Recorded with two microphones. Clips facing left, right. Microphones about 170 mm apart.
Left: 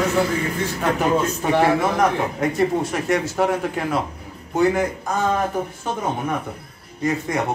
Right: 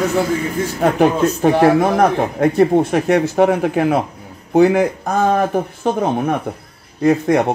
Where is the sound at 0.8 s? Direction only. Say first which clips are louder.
Right 6 dB; 50° right (ahead or behind).